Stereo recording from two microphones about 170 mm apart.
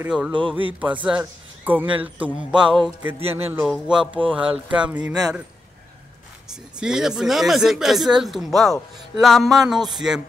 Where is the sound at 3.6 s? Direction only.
Centre (ahead or behind).